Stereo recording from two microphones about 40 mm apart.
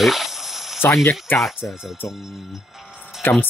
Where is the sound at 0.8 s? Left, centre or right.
Left.